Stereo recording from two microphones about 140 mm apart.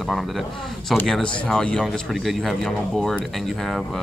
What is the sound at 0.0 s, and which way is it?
Speech, centre (ahead or behind).